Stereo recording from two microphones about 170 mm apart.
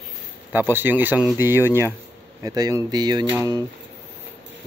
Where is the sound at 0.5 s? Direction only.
10° right (ahead or behind).